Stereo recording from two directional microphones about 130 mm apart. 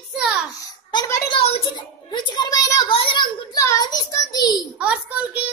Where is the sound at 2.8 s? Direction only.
45° left (ahead or behind).